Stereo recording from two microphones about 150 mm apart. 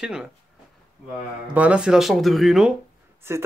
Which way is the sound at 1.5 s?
10° right (ahead or behind).